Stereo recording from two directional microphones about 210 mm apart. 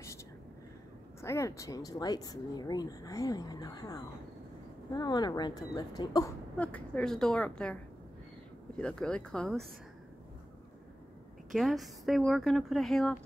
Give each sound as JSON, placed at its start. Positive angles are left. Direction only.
{"t": 1.2, "sound": "speech", "side_deg": 15}
{"t": 6.5, "sound": "speech", "side_deg": 5}
{"t": 11.5, "sound": "speech", "side_deg": 0}